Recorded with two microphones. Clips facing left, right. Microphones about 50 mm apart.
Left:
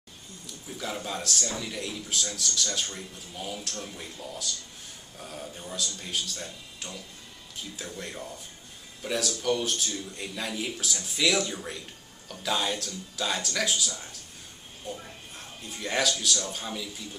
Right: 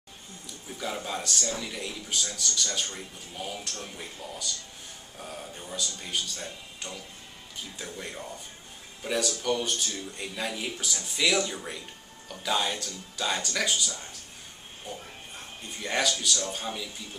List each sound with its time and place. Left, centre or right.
0.7 s speech: centre